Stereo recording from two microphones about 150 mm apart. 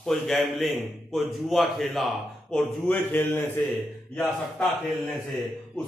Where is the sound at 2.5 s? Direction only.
10° left (ahead or behind).